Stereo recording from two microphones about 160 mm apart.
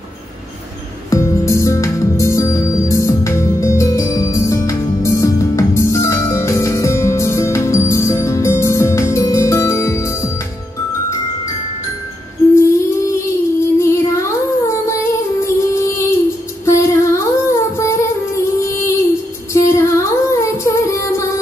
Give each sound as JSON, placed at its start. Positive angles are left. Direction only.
{"t": 1.1, "sound": "music", "side_deg": 20}
{"t": 12.5, "sound": "music", "side_deg": 20}
{"t": 16.6, "sound": "humming", "side_deg": 20}
{"t": 19.5, "sound": "music", "side_deg": 20}